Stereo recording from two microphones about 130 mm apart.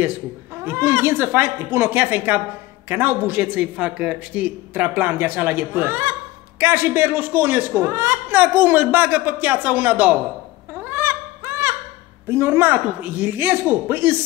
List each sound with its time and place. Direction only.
0.7 s a man's voice: 20° right (ahead or behind)
10.7 s a sound: 15° right (ahead or behind)
12.3 s a man's voice: 20° right (ahead or behind)